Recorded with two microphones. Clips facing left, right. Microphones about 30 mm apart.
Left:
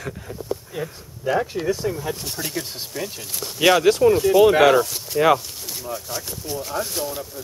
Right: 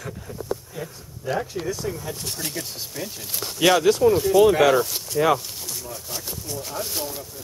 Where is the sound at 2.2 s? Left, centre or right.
Centre.